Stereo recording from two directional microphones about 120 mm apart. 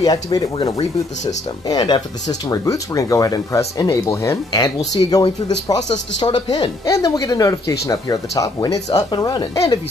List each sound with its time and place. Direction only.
0.0 s speech: 35° left (ahead or behind)
0.6 s speech: 55° left (ahead or behind)
1.7 s speech: 35° left (ahead or behind)